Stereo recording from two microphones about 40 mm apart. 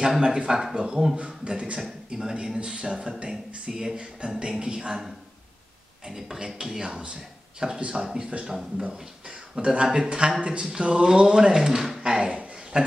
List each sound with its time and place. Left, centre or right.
0.0 s speech: centre
1.1 s speech: right
2.0 s a man's voice: centre
8.5 s speech: centre
9.6 s speech: right
12.0 s a sound: centre
12.7 s speech: right